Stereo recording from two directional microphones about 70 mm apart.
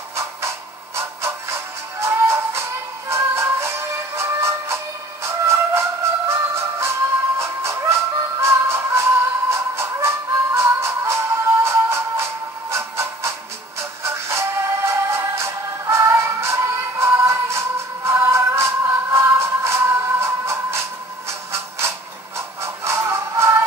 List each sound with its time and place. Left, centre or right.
0.1 s printer: right
0.9 s music: right
21.3 s printer: right
22.6 s music: right